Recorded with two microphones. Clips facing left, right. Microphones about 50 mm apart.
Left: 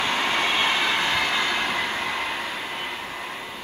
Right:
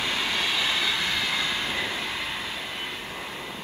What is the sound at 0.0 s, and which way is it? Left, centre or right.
Vehicle, left.